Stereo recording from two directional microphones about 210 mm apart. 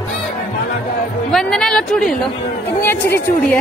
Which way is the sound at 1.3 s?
5° left (ahead or behind).